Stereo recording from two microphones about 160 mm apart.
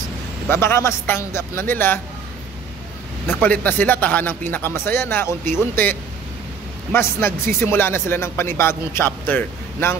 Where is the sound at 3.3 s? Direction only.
10° left (ahead or behind).